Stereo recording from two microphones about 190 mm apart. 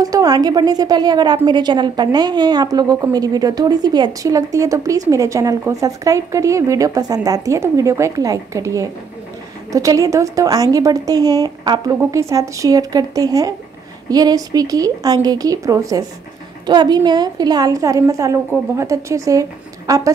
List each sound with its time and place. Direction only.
0.0 s a woman's voice: 20° right (ahead or behind)